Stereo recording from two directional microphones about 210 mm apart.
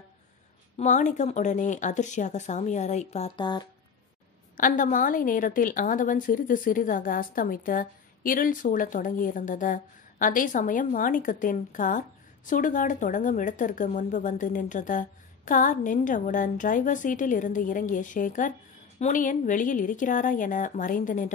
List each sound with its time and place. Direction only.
0.7 s a woman's voice: 35° left (ahead or behind)
4.6 s a woman's voice: 40° left (ahead or behind)